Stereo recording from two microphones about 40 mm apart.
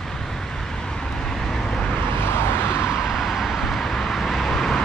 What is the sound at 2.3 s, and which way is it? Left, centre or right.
Vehicle, left.